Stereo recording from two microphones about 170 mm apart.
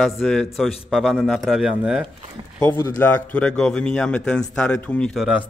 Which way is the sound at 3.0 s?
10° left (ahead or behind).